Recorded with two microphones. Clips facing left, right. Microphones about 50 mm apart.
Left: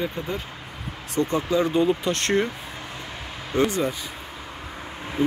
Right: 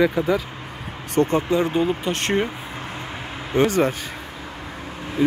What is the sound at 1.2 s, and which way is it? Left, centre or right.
Speech, right.